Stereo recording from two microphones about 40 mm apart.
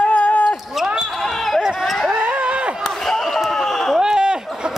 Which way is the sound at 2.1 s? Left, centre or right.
Right.